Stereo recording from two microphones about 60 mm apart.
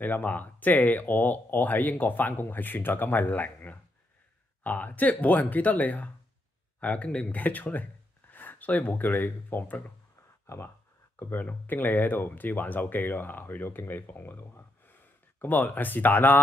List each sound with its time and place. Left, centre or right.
0.0 s speech: left
10.4 s speech: left
11.1 s speech: left